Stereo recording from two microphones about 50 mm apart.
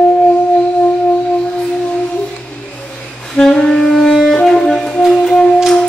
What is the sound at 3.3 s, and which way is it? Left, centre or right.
Saxophone, centre.